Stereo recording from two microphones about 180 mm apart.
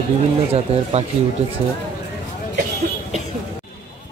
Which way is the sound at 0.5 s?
35° right (ahead or behind).